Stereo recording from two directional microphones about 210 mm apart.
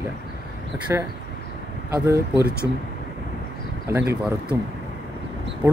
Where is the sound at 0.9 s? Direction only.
10° right (ahead or behind).